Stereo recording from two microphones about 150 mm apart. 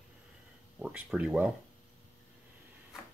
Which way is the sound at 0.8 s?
5° right (ahead or behind).